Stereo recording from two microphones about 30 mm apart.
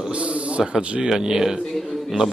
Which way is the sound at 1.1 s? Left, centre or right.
Centre.